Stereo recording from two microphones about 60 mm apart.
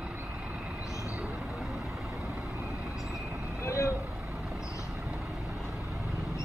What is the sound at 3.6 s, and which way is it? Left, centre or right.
Vehicle, left.